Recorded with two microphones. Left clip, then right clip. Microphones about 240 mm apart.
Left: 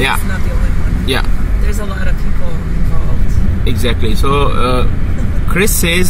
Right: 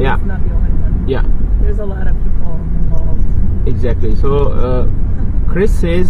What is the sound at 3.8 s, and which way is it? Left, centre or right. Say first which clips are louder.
Speech: left 3 dB; centre.